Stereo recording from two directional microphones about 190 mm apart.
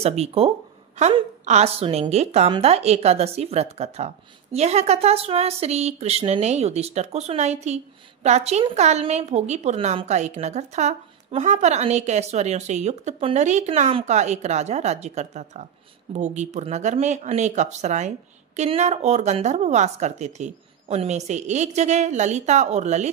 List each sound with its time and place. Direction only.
0.0 s a woman's voice: 35° right (ahead or behind)